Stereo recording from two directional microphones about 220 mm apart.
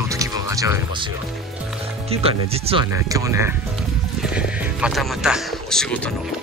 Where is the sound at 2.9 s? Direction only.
15° right (ahead or behind); by 6.1 s 5° left (ahead or behind).